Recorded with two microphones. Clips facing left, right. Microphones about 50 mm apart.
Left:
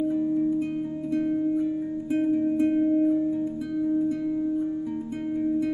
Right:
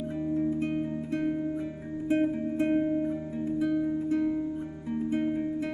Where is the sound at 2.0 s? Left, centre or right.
Right.